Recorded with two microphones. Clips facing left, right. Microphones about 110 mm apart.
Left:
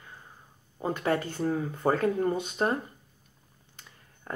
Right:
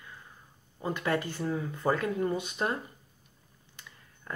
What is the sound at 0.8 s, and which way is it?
Speech, 30° left (ahead or behind).